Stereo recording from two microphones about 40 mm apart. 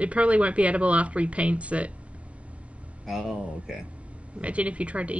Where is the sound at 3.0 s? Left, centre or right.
Centre.